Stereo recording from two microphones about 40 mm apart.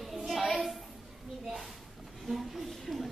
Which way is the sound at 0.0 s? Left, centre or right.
Centre.